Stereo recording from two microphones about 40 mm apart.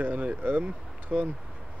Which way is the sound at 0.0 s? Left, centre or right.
Right.